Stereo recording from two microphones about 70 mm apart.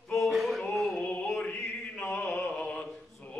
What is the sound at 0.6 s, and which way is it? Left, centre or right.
Music, centre.